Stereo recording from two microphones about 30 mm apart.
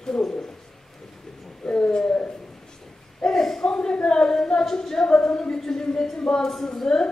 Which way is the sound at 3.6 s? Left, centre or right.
Left.